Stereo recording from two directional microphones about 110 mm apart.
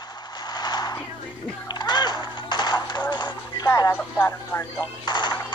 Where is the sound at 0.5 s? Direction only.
40° left (ahead or behind).